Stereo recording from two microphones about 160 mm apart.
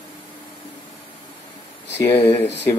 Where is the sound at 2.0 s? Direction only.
15° left (ahead or behind).